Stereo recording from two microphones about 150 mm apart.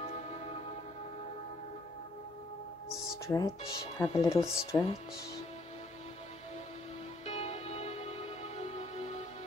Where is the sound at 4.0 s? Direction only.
20° left (ahead or behind).